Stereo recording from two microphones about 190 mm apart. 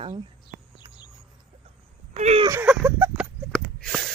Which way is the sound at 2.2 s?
35° right (ahead or behind).